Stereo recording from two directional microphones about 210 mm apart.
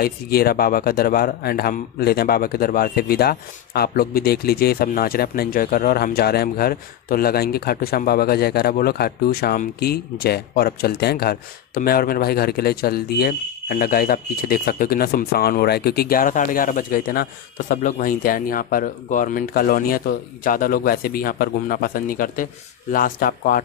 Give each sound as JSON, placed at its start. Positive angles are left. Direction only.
{"t": 0.0, "sound": "speech", "side_deg": 45}